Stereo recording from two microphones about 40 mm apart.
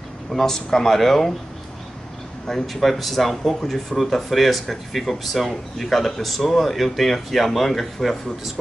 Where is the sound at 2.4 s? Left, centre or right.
Centre.